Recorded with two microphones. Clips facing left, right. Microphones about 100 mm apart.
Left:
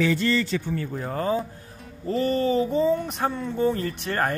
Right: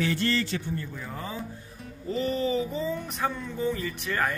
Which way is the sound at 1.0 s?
55° left (ahead or behind).